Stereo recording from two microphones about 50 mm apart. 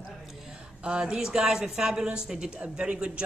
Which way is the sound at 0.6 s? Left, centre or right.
Centre.